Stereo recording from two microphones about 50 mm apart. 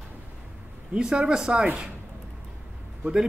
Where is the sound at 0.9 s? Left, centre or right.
Centre.